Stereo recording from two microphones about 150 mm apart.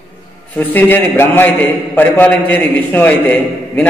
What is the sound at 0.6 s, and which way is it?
A man's voice, 15° left (ahead or behind).